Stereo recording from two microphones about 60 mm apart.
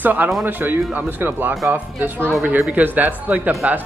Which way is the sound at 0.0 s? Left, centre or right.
Right.